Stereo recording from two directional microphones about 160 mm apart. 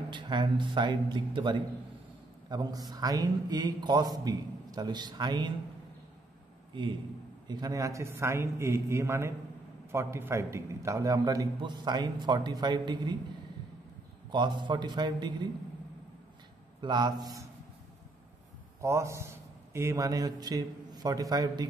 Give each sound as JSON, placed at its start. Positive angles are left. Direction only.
{"t": 0.1, "sound": "a man's voice", "side_deg": -30}
{"t": 6.7, "sound": "a man's voice", "side_deg": -30}
{"t": 14.3, "sound": "a man's voice", "side_deg": -30}
{"t": 16.8, "sound": "a man's voice", "side_deg": -25}
{"t": 18.8, "sound": "a man's voice", "side_deg": -15}